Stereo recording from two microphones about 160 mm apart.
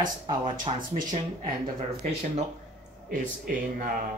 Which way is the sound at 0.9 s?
45° right (ahead or behind).